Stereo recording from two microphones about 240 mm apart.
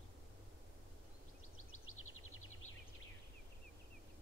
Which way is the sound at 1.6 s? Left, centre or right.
Left.